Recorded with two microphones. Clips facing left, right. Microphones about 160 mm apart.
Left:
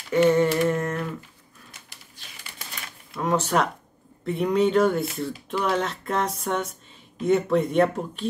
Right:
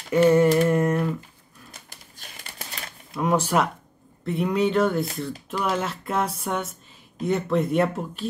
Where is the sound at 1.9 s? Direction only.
45° right (ahead or behind).